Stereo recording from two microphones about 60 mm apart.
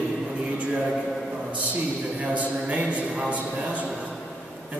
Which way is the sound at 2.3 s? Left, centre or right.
Right.